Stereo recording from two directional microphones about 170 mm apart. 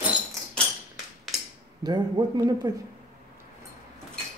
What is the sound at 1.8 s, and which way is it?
Speech, 25° right (ahead or behind).